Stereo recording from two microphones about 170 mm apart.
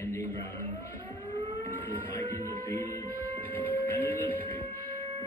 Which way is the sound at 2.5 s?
15° left (ahead or behind).